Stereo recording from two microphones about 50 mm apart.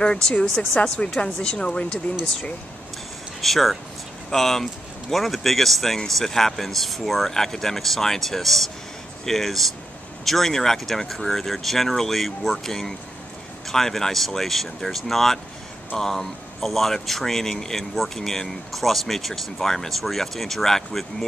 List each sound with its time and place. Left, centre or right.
0.0 s a woman's voice: centre
3.3 s speech: centre